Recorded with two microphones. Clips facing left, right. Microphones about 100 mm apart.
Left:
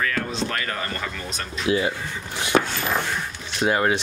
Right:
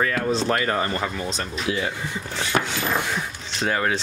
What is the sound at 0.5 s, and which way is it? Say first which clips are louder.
Speech: right 6 dB; 30° right (ahead or behind).